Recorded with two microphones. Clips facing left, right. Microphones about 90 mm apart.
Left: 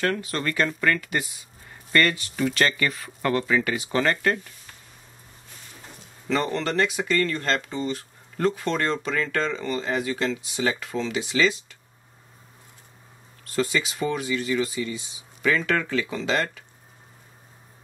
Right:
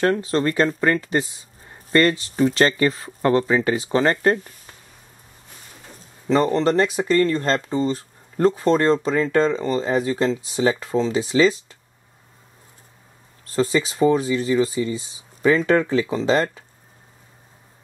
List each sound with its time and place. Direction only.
0.0 s speech: 30° right (ahead or behind)
6.2 s speech: 30° right (ahead or behind)
13.5 s speech: 35° right (ahead or behind)